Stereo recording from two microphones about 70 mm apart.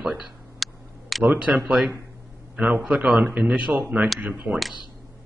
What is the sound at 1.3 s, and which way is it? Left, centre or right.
Speech, right.